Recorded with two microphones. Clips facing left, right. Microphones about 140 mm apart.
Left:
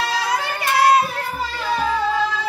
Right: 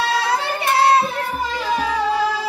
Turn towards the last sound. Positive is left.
turn(degrees=-30)  # may be behind; listen again after turning